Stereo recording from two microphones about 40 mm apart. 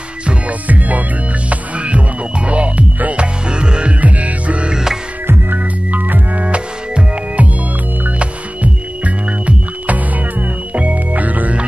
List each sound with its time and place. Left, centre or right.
0.5 s music: right
3.4 s music: right
4.0 s music: right
4.6 s music: centre
5.2 s music: right
5.9 s music: right
6.4 s music: right